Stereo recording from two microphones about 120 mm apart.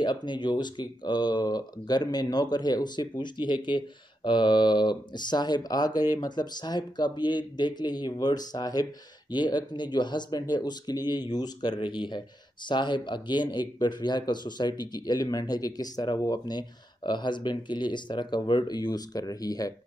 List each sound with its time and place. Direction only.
0.0 s speech: 40° left (ahead or behind)